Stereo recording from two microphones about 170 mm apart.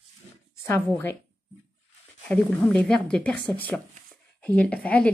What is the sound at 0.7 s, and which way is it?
Speech, 15° left (ahead or behind).